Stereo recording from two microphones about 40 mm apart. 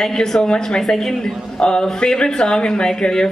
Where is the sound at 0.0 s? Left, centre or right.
Centre.